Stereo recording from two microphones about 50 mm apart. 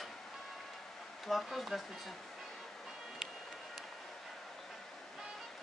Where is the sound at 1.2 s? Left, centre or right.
Centre.